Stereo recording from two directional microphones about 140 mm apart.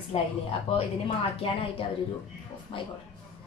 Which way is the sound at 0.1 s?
40° left (ahead or behind).